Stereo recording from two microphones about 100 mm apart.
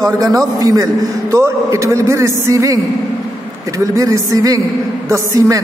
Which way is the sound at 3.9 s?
35° right (ahead or behind).